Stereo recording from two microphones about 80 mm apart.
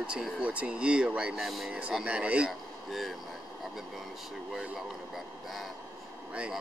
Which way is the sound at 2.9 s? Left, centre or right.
Centre.